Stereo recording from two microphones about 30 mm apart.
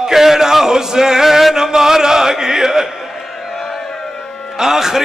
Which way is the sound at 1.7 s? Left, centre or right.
Centre.